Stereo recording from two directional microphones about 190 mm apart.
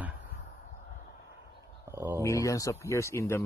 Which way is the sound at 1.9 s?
15° right (ahead or behind).